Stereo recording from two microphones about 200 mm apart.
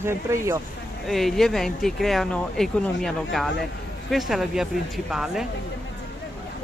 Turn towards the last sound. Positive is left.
turn(degrees=0)  # may be behind; listen again after turning